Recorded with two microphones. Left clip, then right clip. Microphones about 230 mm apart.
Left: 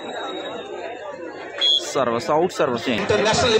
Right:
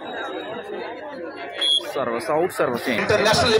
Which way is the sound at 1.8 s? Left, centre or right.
Centre.